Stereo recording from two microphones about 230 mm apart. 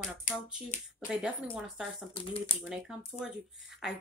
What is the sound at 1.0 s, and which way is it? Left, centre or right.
Speech, centre.